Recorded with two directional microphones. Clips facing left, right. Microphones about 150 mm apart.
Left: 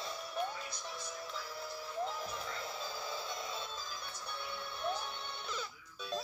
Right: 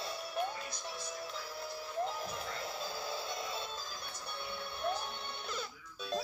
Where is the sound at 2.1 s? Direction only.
10° right (ahead or behind).